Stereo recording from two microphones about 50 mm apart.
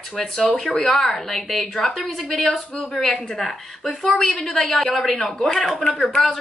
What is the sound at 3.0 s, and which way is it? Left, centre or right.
Speech, centre.